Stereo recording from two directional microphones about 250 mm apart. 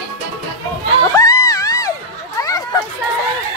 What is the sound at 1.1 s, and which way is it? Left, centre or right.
Music, centre.